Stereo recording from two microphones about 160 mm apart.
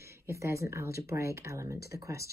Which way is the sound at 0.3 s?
20° right (ahead or behind).